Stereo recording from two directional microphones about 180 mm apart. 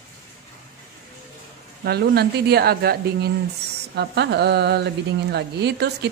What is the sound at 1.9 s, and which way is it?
Speech, 60° right (ahead or behind).